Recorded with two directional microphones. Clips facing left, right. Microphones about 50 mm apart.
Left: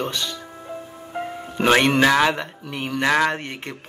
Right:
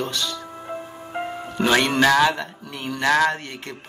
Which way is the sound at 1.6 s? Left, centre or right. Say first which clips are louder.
Left 2 dB; left.